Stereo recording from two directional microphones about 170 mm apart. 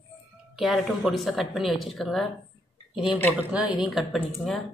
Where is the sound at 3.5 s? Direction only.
5° right (ahead or behind).